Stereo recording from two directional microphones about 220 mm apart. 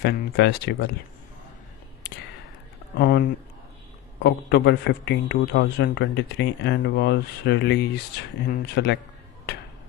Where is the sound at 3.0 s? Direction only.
45° left (ahead or behind).